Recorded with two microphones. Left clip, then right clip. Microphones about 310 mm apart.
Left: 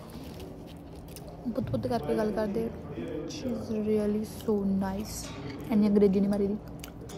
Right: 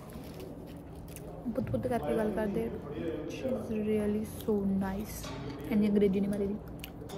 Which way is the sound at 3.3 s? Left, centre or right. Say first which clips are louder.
Even; centre.